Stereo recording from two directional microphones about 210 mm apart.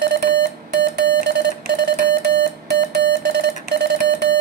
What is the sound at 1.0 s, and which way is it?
Alarm clock, 55° right (ahead or behind).